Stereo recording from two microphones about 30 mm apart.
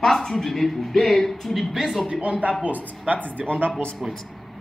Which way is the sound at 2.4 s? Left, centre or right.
Right.